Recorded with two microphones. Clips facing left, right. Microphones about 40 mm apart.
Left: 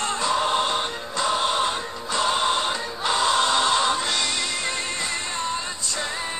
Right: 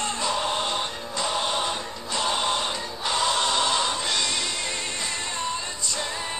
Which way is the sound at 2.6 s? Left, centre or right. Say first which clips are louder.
Left 3 dB; left.